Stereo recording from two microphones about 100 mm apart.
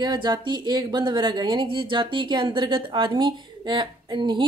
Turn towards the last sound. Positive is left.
turn(degrees=-50)  # may be behind; listen again after turning